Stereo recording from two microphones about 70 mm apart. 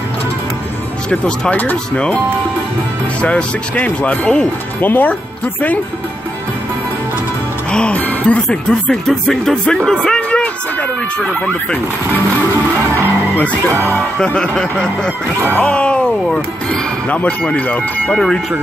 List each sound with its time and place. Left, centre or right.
1.1 s speech: centre
3.2 s speech: centre
4.7 s speech: left
7.7 s music: centre
8.9 s speech: centre
9.8 s a sound: centre
13.9 s speech: centre
18.1 s speech: centre